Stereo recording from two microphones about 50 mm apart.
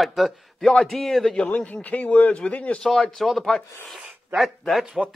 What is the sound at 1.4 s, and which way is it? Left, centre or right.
A man's voice, left.